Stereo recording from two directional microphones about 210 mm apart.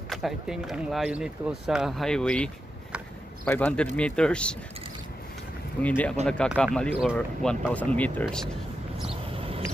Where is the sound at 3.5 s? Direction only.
5° left (ahead or behind).